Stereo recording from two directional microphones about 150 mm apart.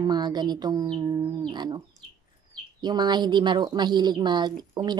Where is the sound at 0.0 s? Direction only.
30° right (ahead or behind).